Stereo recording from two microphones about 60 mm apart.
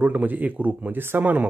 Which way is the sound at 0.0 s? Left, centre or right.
Right.